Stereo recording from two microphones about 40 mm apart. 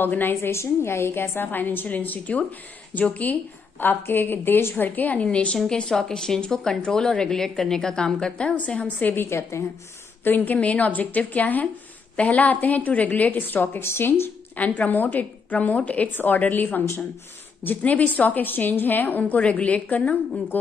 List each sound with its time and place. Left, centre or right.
0.0 s a woman's voice: left
0.3 s a woman's voice: left
1.9 s a woman's voice: left
3.8 s a woman's voice: left
4.8 s a woman's voice: left
5.2 s a woman's voice: left
9.0 s a woman's voice: left
13.8 s speech: left
14.8 s a woman's voice: left
18.4 s a woman's voice: left
19.3 s a woman's voice: left